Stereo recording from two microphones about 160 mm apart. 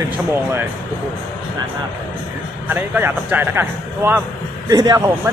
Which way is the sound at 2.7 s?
10° right (ahead or behind).